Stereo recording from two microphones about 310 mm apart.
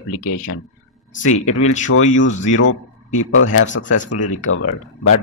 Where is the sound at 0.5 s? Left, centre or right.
Left.